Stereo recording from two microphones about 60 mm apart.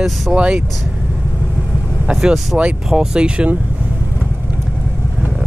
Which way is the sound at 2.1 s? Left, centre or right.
Centre.